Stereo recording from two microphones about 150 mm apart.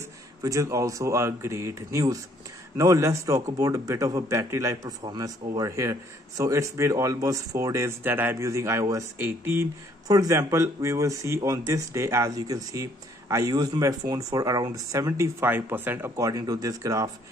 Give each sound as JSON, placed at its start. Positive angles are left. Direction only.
{"t": 0.4, "sound": "a man's voice", "side_deg": -20}